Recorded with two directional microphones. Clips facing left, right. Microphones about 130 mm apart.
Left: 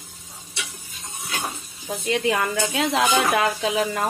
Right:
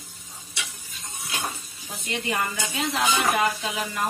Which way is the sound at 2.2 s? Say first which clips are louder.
Left 3 dB; 90° left.